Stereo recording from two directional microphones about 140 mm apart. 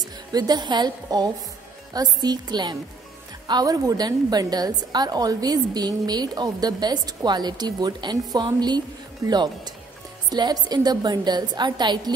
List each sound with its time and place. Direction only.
0.3 s a woman's voice: 30° right (ahead or behind)